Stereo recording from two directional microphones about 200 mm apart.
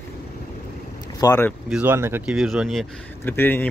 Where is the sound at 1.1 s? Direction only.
15° left (ahead or behind).